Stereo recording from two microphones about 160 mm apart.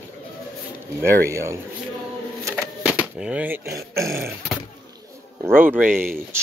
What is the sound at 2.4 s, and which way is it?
Dog, 10° right (ahead or behind).